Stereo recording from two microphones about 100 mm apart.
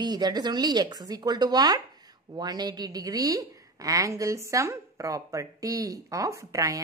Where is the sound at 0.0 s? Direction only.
45° right (ahead or behind).